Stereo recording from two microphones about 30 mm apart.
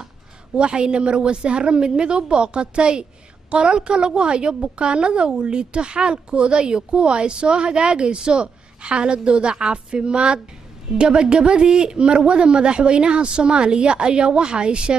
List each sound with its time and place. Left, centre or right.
0.6 s speech: right